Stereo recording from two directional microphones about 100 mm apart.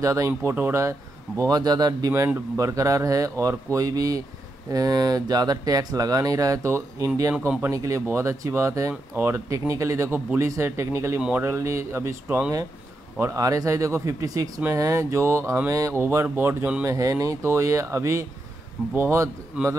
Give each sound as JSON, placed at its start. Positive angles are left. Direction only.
{"t": 0.0, "sound": "speech", "side_deg": -35}
{"t": 16.8, "sound": "speech", "side_deg": -30}
{"t": 19.6, "sound": "a man's voice", "side_deg": -10}